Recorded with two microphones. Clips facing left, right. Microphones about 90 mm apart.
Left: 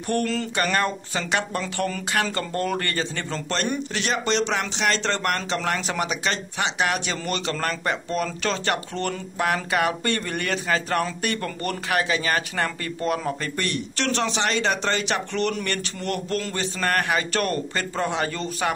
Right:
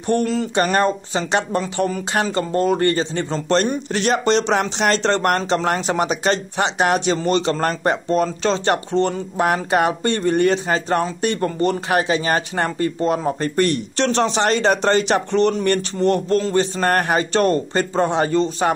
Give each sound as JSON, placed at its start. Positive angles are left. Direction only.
{"t": 0.0, "sound": "speech", "side_deg": -20}
{"t": 3.9, "sound": "speech", "side_deg": -40}